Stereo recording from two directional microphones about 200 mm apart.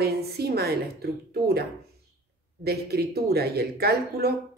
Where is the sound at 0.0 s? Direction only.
50° right (ahead or behind).